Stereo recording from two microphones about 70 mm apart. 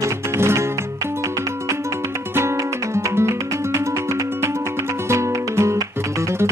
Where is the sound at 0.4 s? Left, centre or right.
Right.